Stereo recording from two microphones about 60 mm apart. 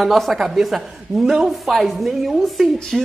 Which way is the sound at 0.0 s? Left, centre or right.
Centre.